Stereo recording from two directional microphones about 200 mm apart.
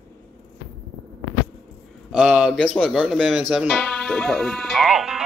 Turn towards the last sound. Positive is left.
turn(degrees=-5)  # may be behind; listen again after turning